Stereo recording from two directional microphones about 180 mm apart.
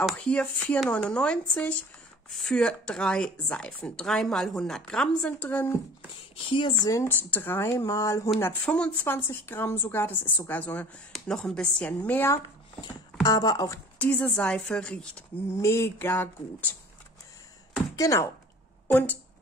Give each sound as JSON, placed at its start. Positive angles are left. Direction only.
{"t": 0.0, "sound": "speech", "side_deg": 5}
{"t": 6.5, "sound": "speech", "side_deg": 25}
{"t": 13.2, "sound": "speech", "side_deg": 20}
{"t": 13.9, "sound": "speech", "side_deg": 10}
{"t": 17.9, "sound": "speech", "side_deg": 20}